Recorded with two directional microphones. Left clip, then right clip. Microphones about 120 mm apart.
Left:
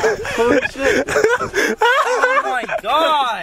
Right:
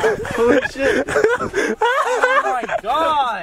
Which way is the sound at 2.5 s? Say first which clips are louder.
Left 2 dB; 10° left (ahead or behind).